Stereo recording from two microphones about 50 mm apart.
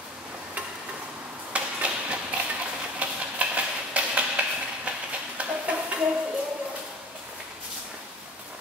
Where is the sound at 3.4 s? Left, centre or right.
Right.